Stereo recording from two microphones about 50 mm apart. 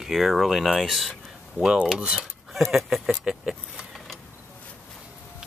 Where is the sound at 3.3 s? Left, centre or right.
Centre.